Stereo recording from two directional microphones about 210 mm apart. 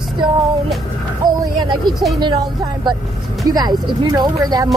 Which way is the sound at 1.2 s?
20° right (ahead or behind).